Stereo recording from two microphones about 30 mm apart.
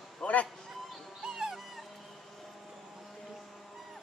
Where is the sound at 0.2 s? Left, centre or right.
Left.